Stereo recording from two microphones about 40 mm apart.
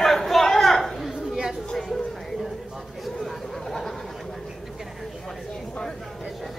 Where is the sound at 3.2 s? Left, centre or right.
Centre.